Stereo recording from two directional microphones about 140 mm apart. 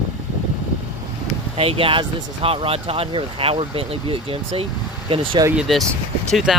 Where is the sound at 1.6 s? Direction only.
40° right (ahead or behind).